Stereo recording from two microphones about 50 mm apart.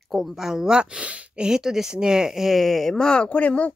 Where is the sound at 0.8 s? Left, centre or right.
Right.